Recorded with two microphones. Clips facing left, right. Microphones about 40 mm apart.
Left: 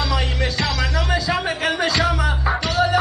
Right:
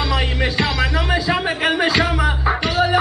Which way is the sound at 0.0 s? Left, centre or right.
Centre.